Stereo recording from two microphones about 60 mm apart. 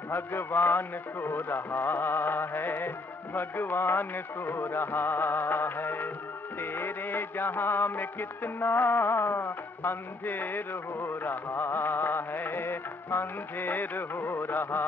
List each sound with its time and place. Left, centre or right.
0.1 s music: left